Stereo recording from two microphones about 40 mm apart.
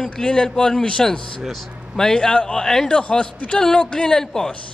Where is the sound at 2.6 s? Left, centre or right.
Centre.